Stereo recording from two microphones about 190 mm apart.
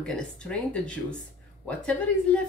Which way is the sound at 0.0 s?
5° left (ahead or behind).